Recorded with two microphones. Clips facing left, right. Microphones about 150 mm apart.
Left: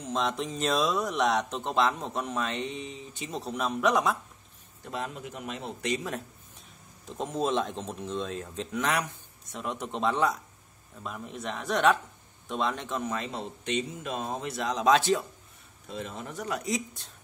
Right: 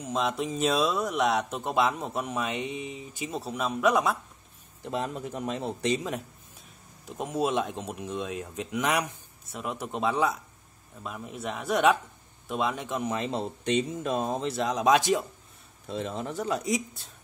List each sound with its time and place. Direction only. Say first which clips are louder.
0.0 s speech: right 1 dB; 5° right (ahead or behind)
4.8 s speech: right 4 dB; 25° right (ahead or behind)
5.2 s speech: right 5 dB; 35° right (ahead or behind)
7.1 s speech: right 1 dB; 10° right (ahead or behind)
9.5 s speech: right 1 dB; 5° right (ahead or behind); by 13.4 s 20° right (ahead or behind)
13.7 s speech: right 5 dB; 35° right (ahead or behind); by 15.2 s 15° right (ahead or behind)
15.9 s speech: right 5 dB; 30° right (ahead or behind)